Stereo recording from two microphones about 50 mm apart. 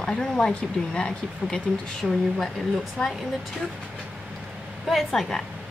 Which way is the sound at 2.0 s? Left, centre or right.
Centre.